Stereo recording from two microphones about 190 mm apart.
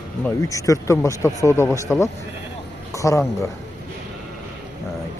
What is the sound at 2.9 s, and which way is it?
Speech, 15° left (ahead or behind).